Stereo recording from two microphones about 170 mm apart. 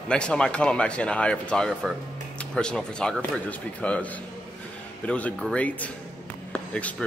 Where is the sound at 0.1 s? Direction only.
5° left (ahead or behind).